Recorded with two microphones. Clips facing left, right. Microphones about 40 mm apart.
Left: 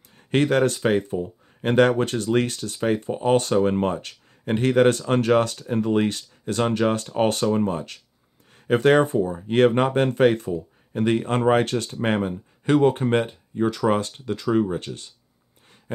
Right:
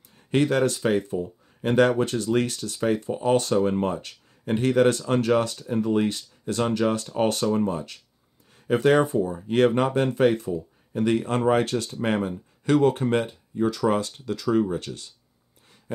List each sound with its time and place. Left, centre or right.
0.3 s speech: left
2.8 s speech: left